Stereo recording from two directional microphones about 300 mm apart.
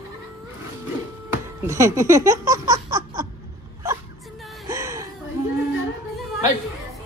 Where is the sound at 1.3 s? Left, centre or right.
Centre.